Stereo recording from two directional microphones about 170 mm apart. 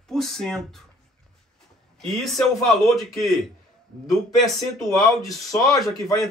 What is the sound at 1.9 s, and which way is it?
Speech, centre (ahead or behind).